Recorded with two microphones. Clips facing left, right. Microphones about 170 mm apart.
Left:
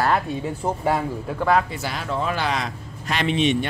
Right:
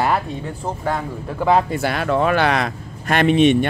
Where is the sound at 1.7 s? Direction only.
55° right (ahead or behind).